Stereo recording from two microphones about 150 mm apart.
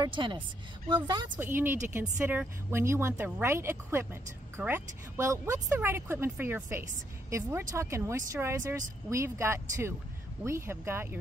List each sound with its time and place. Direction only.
0.0 s speech: 30° right (ahead or behind)
1.3 s speech: 15° right (ahead or behind)